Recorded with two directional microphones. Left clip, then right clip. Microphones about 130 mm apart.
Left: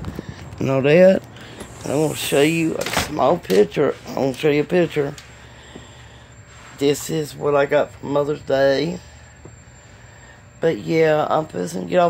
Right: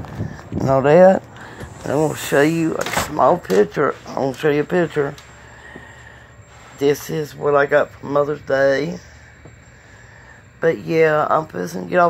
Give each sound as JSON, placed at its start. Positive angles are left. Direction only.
{"t": 0.6, "sound": "speech", "side_deg": 0}
{"t": 3.6, "sound": "speech", "side_deg": 20}
{"t": 4.0, "sound": "speech", "side_deg": 35}
{"t": 4.3, "sound": "speech", "side_deg": 15}
{"t": 6.8, "sound": "speech", "side_deg": 10}
{"t": 10.6, "sound": "speech", "side_deg": 10}